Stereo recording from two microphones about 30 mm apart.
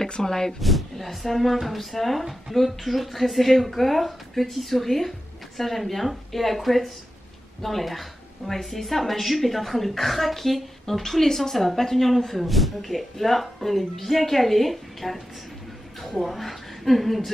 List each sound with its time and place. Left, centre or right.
0.0 s speech: centre
0.6 s speech: centre
16.3 s a woman's voice: centre